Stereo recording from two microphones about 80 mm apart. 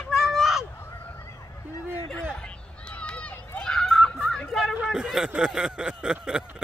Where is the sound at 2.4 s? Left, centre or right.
Centre.